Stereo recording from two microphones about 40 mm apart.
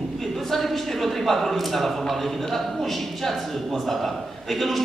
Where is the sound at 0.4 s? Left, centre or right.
Centre.